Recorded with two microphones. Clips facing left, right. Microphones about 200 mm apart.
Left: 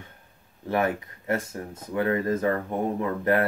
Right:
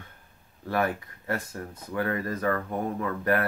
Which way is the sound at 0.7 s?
20° left (ahead or behind).